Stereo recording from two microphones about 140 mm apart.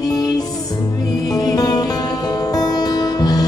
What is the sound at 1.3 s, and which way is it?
Music, 30° left (ahead or behind).